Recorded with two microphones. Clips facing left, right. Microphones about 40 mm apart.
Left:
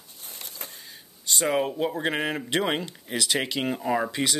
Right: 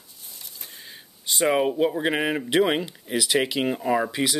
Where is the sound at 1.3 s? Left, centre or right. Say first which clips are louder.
Right 3 dB; centre.